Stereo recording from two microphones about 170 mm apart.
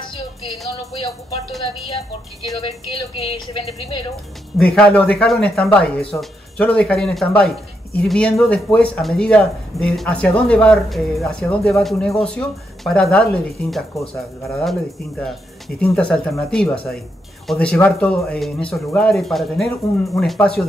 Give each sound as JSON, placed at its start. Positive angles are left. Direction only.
{"t": 2.6, "sound": "speech", "side_deg": 30}
{"t": 4.6, "sound": "speech", "side_deg": 5}